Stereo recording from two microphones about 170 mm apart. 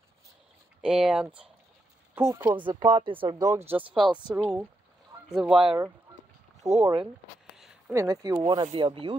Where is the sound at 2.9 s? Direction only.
30° right (ahead or behind); by 4.5 s 15° right (ahead or behind).